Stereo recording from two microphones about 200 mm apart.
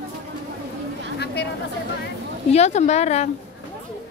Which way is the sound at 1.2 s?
55° left (ahead or behind).